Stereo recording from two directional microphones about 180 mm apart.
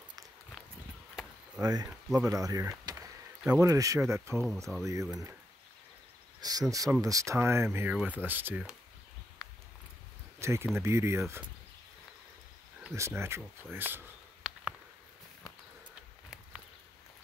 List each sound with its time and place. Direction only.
1.6 s speech: 20° right (ahead or behind)
2.8 s a sound: 20° right (ahead or behind)
3.4 s speech: 15° right (ahead or behind)
6.4 s speech: 20° right (ahead or behind)
10.4 s speech: 15° right (ahead or behind)
12.9 s speech: 15° right (ahead or behind)